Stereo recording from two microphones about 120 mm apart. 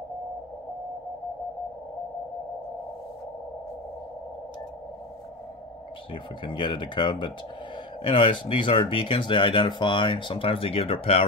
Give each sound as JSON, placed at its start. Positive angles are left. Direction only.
{"t": 6.4, "sound": "speech", "side_deg": 40}